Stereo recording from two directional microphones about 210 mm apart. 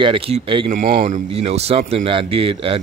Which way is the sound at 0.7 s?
40° right (ahead or behind).